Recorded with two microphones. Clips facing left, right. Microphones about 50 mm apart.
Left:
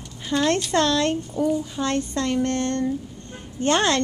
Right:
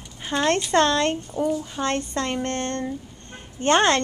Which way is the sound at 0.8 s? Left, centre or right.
Right.